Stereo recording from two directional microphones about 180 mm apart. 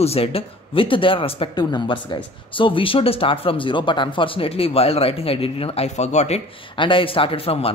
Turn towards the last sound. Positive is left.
turn(degrees=30)  # may be behind; listen again after turning